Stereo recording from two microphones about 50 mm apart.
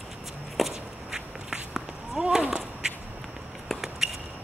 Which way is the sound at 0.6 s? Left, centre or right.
Centre.